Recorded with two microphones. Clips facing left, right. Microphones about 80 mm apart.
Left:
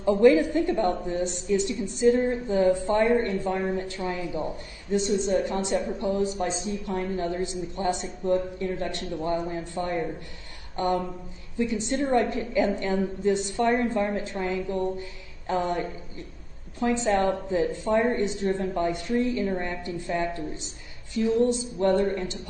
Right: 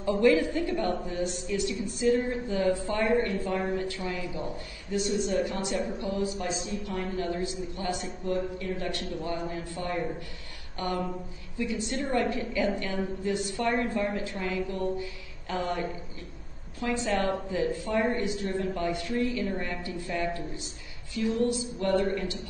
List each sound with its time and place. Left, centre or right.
0.0 s a woman's voice: left